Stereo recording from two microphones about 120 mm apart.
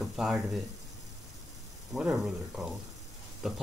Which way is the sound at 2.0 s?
5° right (ahead or behind).